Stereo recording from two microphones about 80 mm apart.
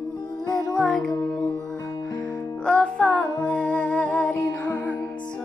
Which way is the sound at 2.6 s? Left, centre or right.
Centre.